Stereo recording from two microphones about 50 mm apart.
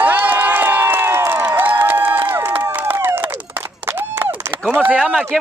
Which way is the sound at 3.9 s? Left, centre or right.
Right.